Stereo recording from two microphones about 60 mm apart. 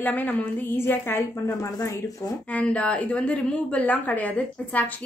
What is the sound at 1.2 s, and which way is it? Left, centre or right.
Speech, left.